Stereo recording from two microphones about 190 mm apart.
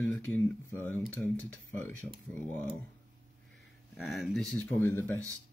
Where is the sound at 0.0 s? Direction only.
10° left (ahead or behind).